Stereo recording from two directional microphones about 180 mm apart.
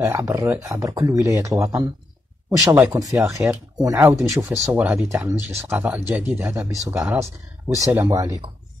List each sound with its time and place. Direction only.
0.0 s speech: 15° right (ahead or behind)